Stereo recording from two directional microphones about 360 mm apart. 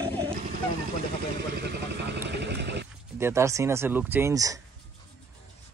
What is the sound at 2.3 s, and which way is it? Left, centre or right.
Dog, right.